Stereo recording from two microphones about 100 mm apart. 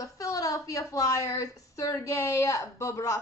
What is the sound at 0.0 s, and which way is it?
A woman's voice, 35° left (ahead or behind).